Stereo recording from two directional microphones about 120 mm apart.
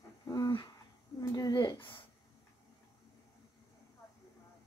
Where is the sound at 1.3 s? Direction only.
35° left (ahead or behind).